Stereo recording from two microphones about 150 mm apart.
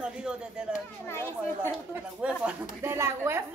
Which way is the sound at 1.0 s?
15° left (ahead or behind).